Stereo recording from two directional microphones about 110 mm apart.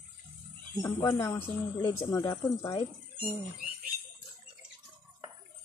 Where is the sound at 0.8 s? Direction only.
25° left (ahead or behind).